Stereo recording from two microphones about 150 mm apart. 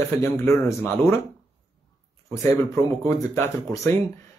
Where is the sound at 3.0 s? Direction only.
20° left (ahead or behind).